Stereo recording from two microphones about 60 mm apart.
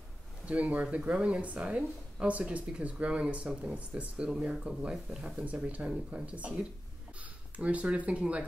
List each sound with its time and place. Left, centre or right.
0.5 s speech: right